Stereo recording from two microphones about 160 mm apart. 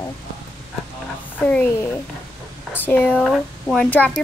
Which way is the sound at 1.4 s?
10° left (ahead or behind).